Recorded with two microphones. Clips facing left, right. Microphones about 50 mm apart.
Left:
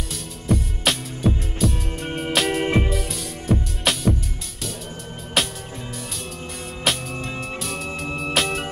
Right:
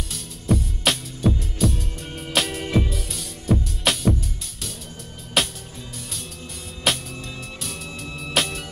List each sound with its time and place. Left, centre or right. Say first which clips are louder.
0.1 s music: even; centre
2.6 s music: left 2 dB; left
2.9 s music: left 6 dB; centre
5.4 s music: even; centre
6.8 s music: even; centre